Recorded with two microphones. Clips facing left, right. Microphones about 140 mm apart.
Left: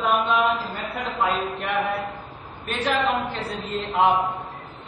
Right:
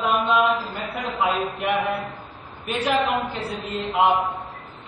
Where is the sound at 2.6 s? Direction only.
Centre (ahead or behind).